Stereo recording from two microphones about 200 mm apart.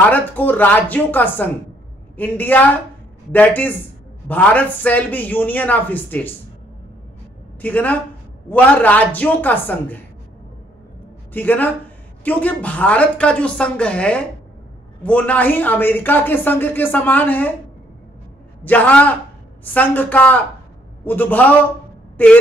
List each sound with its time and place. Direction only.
0.1 s speech: 10° left (ahead or behind)
7.6 s speech: 5° left (ahead or behind)
11.3 s speech: 10° left (ahead or behind)
18.6 s speech: 10° left (ahead or behind)